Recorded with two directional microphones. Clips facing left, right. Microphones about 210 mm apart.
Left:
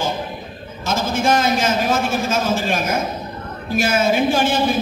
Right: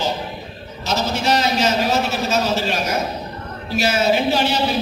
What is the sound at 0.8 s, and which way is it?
A man's voice, 50° left (ahead or behind).